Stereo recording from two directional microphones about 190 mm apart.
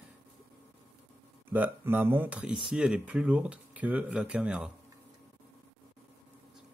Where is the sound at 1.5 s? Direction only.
10° right (ahead or behind).